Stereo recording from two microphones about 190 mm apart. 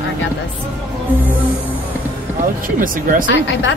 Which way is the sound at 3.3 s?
75° left (ahead or behind).